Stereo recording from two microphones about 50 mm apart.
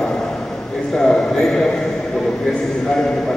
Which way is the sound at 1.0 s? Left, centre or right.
Centre.